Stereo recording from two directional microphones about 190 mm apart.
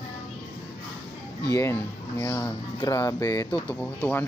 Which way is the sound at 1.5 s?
15° left (ahead or behind).